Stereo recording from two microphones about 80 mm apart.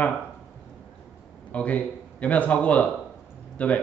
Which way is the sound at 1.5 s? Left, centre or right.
Centre.